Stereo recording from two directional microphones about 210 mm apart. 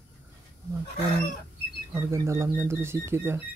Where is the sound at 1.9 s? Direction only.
15° right (ahead or behind).